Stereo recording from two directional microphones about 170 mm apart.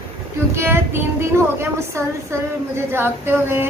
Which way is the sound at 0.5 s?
15° right (ahead or behind).